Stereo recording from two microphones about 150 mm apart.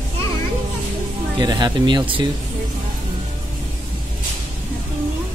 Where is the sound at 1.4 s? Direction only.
30° right (ahead or behind).